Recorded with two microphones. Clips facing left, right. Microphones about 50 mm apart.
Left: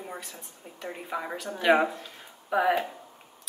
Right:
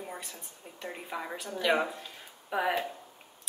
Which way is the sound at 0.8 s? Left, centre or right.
Centre.